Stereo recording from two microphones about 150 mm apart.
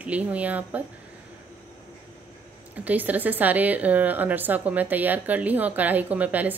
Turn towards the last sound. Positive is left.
turn(degrees=-10)  # may be behind; listen again after turning